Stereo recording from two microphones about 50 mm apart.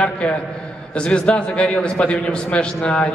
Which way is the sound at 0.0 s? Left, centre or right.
Left.